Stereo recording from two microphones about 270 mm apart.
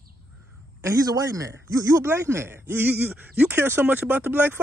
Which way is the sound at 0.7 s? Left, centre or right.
Centre.